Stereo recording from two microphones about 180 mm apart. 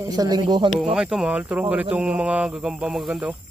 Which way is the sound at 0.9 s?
5° right (ahead or behind).